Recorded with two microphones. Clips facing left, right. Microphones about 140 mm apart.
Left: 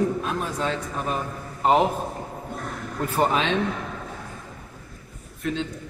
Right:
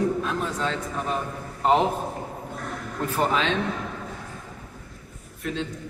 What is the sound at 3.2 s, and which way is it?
Speech, 20° left (ahead or behind).